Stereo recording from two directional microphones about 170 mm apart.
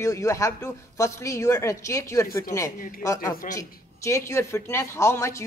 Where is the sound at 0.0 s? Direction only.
20° left (ahead or behind).